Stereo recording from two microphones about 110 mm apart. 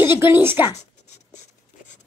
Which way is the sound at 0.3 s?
20° right (ahead or behind).